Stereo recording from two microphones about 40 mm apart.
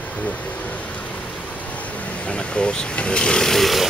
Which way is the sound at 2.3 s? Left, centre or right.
Left.